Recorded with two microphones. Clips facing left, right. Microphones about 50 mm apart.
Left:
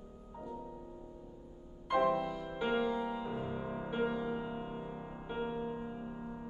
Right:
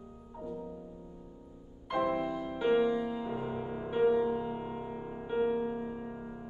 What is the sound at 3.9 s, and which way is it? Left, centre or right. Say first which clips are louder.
Music: right 9 dB; centre.